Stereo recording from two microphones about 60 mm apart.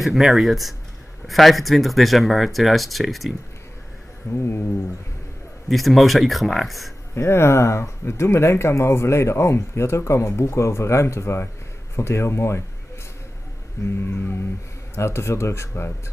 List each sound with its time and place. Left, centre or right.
0.0 s speech: centre
4.3 s speech: left
5.7 s speech: centre
7.2 s speech: left
14.0 s speech: left